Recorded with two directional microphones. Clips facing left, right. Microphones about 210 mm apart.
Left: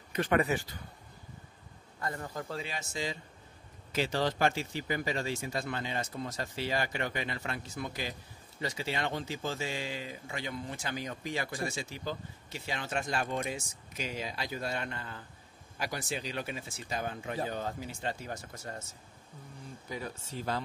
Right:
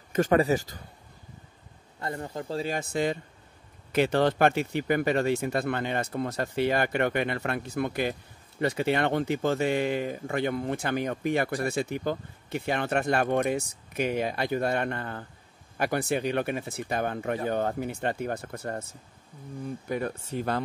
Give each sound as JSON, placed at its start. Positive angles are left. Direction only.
{"t": 0.1, "sound": "a man's voice", "side_deg": -40}
{"t": 2.0, "sound": "speech", "side_deg": -25}
{"t": 2.7, "sound": "speech", "side_deg": -55}
{"t": 19.9, "sound": "speech", "side_deg": -60}